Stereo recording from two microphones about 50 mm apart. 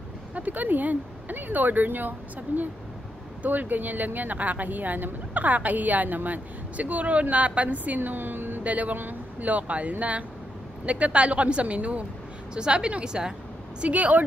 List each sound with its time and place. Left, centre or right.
0.3 s speech: right
8.6 s a woman's voice: right; by 13.3 s centre
13.7 s speech: right